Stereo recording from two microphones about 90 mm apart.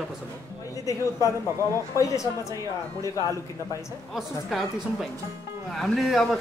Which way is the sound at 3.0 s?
35° left (ahead or behind).